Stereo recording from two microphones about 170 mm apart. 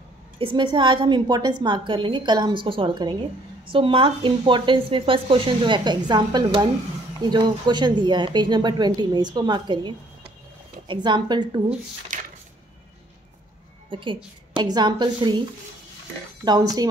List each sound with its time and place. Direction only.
0.4 s speech: 30° right (ahead or behind)
12.1 s a sound: 50° right (ahead or behind)
13.8 s speech: 30° right (ahead or behind)
16.4 s speech: 25° right (ahead or behind)